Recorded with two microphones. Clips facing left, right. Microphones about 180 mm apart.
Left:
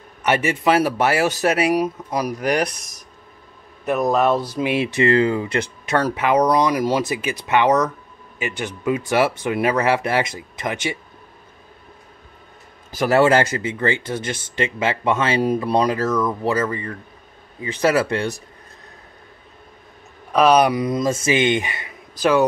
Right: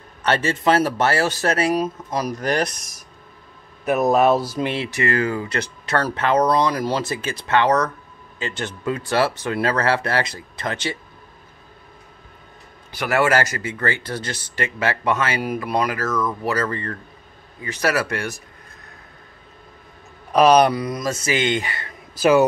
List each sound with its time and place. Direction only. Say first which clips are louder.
0.2 s speech: left 1 dB; 15° left (ahead or behind)
3.8 s speech: right 2 dB; 5° right (ahead or behind)
4.7 s speech: left 8 dB; 20° left (ahead or behind)
12.9 s speech: left 4 dB; 35° left (ahead or behind)
16.3 s speech: left 2 dB; 20° left (ahead or behind)
20.3 s speech: right 1 dB; centre (ahead or behind)
20.7 s speech: left 4 dB; 20° left (ahead or behind)
22.1 s speech: right 2 dB; 5° right (ahead or behind)